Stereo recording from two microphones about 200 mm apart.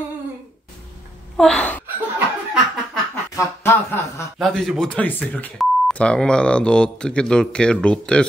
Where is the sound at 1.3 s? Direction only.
5° left (ahead or behind).